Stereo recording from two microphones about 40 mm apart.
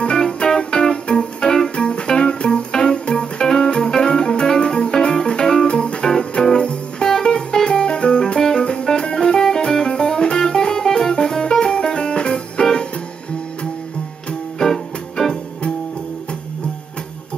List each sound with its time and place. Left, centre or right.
0.0 s music: left
14.6 s music: centre